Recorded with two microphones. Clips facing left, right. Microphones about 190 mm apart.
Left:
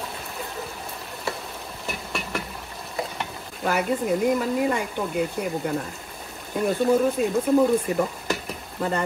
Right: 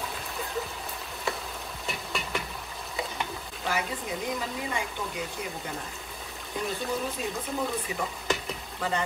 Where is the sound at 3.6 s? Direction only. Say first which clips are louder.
Left 9 dB; 55° left (ahead or behind).